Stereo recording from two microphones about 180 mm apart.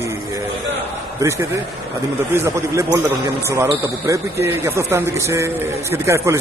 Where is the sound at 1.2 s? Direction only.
15° right (ahead or behind).